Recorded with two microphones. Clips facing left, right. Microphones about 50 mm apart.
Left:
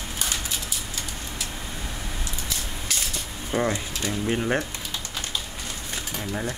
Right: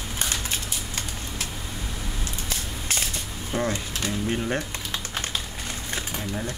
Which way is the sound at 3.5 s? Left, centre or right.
Centre.